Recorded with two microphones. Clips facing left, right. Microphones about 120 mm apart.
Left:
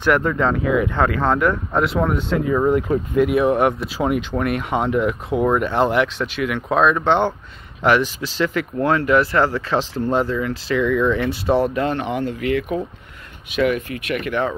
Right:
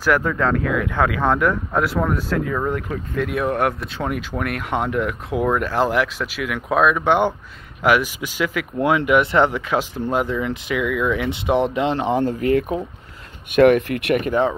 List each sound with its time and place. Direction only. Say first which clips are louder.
0.0 s speech: left 1 dB; centre (ahead or behind); by 9.6 s 20° right (ahead or behind)
9.7 s speech: left 1 dB; 10° right (ahead or behind)
11.2 s speech: left 1 dB; 20° right (ahead or behind); by 12.7 s 40° right (ahead or behind)
13.5 s speech: right 6 dB; 55° right (ahead or behind)
14.1 s speech: right 3 dB; 40° right (ahead or behind)